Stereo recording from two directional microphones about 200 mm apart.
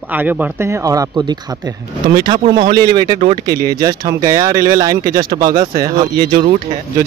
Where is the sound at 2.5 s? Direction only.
20° right (ahead or behind).